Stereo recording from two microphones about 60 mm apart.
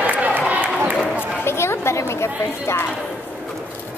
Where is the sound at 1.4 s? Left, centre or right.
Left.